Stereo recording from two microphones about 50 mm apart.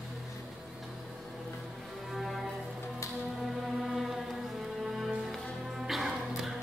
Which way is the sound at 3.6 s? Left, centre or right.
Centre.